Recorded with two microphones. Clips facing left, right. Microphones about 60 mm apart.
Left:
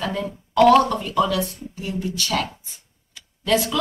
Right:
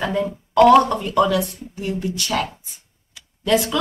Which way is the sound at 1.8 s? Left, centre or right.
Right.